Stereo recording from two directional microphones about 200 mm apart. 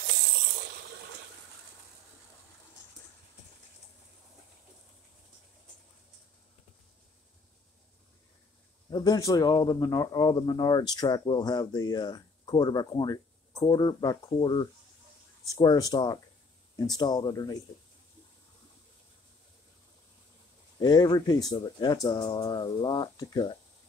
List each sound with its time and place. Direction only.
8.9 s speech: 20° left (ahead or behind)
20.8 s speech: 20° left (ahead or behind)